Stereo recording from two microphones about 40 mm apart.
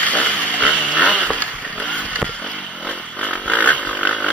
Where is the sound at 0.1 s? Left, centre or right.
Left.